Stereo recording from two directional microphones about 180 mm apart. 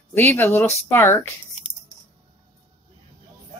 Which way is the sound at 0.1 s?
10° left (ahead or behind).